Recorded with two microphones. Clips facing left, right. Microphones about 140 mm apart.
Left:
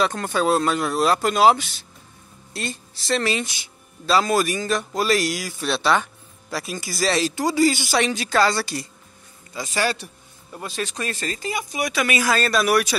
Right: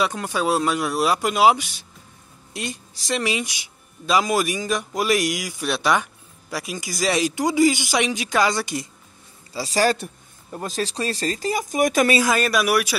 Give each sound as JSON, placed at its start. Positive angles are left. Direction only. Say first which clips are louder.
{"t": 0.0, "sound": "speech", "louder": "left 2 dB", "side_deg": -10}
{"t": 9.5, "sound": "speech", "louder": "right 4 dB", "side_deg": -35}
{"t": 12.2, "sound": "speech", "louder": "right 1 dB", "side_deg": -15}